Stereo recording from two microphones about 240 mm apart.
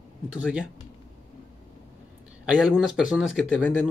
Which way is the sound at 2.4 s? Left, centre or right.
Centre.